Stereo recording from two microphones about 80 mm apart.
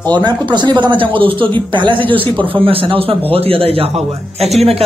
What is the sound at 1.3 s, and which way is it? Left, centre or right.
Speech, right.